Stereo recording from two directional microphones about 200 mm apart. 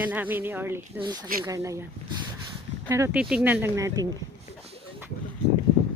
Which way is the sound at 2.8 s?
15° right (ahead or behind).